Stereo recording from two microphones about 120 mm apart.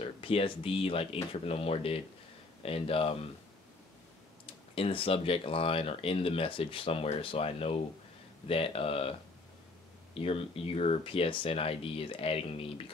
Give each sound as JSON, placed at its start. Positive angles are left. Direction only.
{"t": 0.0, "sound": "speech", "side_deg": 50}
{"t": 4.7, "sound": "speech", "side_deg": 50}
{"t": 10.1, "sound": "speech", "side_deg": 50}